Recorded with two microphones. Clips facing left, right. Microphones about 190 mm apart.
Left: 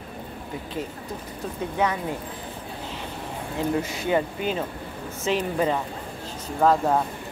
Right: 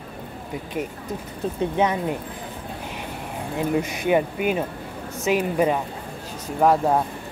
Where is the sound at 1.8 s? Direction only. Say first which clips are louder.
Right 2 dB; 20° right (ahead or behind).